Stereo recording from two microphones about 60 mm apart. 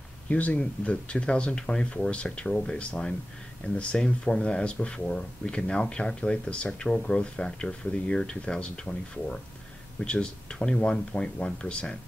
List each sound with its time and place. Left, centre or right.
0.3 s speech: left